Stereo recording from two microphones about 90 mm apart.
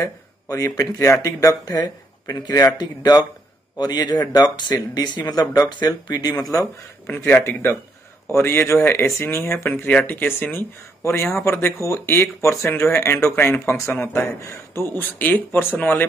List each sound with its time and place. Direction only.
0.0 s speech: 35° left (ahead or behind)
7.1 s speech: 20° left (ahead or behind)